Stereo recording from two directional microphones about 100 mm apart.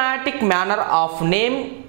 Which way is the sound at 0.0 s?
10° right (ahead or behind).